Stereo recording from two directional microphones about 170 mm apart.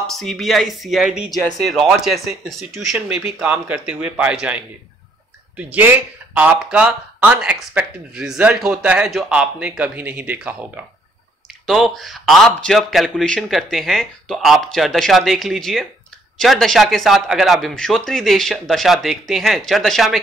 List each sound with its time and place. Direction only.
0.0 s a man's voice: centre (ahead or behind)